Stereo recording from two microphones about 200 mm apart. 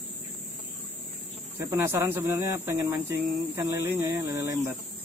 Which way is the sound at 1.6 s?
15° right (ahead or behind).